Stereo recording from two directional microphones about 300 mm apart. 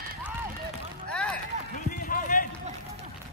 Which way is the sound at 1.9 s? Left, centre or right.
Left.